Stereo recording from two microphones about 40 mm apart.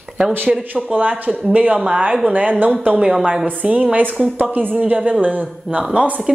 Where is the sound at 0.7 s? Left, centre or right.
Right.